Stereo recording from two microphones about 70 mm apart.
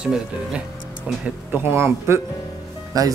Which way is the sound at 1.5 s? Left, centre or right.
Right.